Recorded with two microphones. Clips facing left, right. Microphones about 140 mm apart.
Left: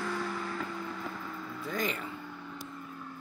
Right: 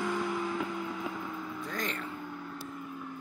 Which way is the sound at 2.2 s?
5° right (ahead or behind).